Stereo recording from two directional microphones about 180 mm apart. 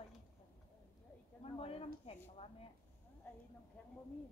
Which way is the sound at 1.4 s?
35° left (ahead or behind).